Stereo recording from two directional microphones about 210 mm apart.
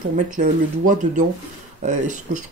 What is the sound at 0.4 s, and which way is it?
Speech, 35° right (ahead or behind).